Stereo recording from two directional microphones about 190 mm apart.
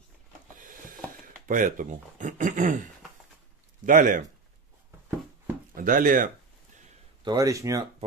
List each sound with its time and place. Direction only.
0.6 s a sound: 45° right (ahead or behind)
1.5 s speech: 45° right (ahead or behind)
5.8 s speech: 45° right (ahead or behind)
7.2 s speech: 20° right (ahead or behind)